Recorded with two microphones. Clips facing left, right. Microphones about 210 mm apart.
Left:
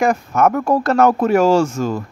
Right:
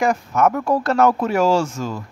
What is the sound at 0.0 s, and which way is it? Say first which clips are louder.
Speech: left 2 dB; 50° left (ahead or behind).